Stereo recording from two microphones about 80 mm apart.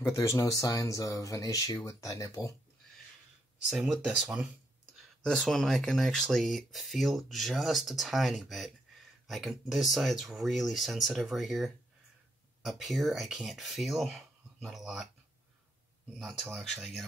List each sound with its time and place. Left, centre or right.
0.1 s speech: left
3.6 s speech: centre
4.9 s speech: centre
16.6 s speech: centre